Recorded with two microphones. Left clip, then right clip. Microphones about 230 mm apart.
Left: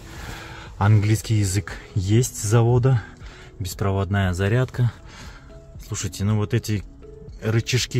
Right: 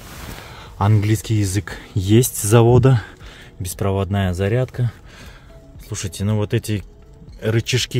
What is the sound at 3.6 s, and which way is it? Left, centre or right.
Speech, centre.